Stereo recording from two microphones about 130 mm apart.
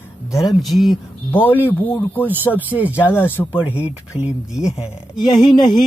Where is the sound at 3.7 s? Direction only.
10° right (ahead or behind).